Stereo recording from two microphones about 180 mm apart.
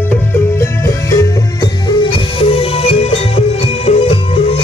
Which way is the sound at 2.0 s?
30° left (ahead or behind).